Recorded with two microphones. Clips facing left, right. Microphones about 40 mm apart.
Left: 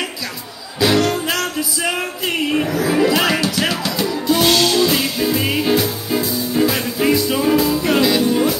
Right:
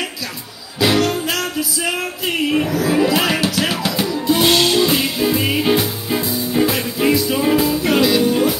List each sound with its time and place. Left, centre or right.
0.7 s music: centre
5.6 s music: centre
6.7 s music: centre